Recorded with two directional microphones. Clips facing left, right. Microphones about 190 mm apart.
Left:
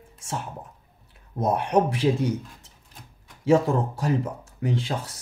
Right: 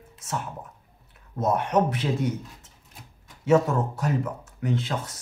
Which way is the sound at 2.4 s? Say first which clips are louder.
Right 1 dB; 5° right (ahead or behind).